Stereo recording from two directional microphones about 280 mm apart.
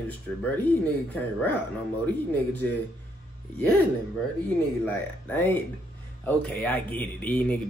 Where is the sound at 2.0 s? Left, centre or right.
Centre.